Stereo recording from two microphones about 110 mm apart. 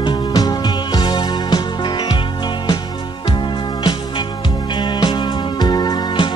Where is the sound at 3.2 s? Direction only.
45° left (ahead or behind).